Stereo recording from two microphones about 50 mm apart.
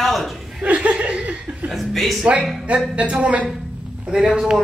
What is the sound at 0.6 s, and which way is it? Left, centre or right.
Speech, right.